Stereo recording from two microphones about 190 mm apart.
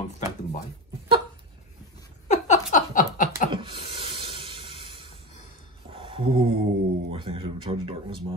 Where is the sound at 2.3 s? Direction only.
40° left (ahead or behind).